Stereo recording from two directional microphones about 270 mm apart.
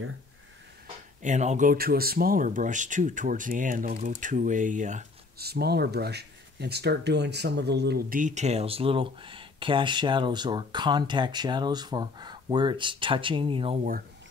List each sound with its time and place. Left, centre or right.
1.2 s speech: right